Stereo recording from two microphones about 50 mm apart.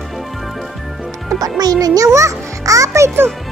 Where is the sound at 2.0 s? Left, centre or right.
Right.